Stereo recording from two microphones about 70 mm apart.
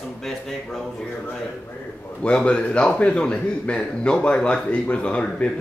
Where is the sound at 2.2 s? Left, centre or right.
Centre.